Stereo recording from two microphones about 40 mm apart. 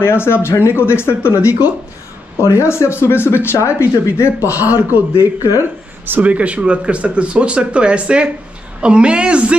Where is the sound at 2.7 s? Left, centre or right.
Left.